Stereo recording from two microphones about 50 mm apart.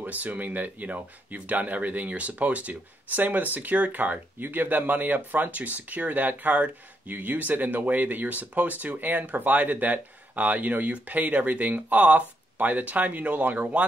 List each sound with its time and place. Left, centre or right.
0.0 s speech: right